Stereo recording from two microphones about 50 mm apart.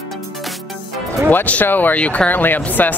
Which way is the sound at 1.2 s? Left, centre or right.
Left.